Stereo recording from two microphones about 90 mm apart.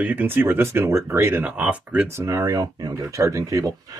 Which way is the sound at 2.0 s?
30° right (ahead or behind).